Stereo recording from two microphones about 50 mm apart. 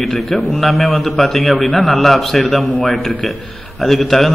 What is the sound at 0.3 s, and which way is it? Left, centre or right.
A man's voice, centre.